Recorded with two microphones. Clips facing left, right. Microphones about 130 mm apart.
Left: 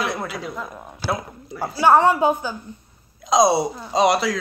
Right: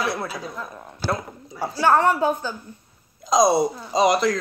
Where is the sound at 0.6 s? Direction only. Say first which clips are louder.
Right 2 dB; 10° left (ahead or behind).